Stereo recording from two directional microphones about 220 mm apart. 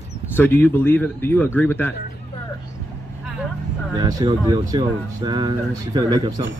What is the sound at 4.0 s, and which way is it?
Speech, 20° right (ahead or behind).